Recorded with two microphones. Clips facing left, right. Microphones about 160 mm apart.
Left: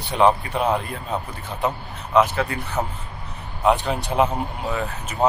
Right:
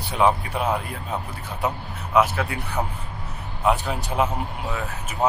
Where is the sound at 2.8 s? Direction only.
5° left (ahead or behind).